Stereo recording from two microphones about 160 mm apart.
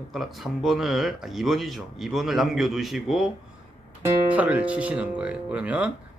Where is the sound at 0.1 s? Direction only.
Centre (ahead or behind).